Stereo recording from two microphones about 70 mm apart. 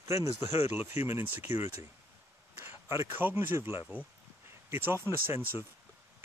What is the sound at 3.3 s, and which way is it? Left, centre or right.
Speech, right.